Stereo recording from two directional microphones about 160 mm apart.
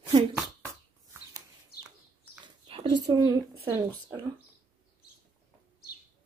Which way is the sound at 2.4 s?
30° right (ahead or behind).